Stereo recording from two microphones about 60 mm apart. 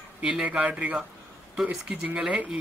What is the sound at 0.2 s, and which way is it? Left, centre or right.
Speech, centre.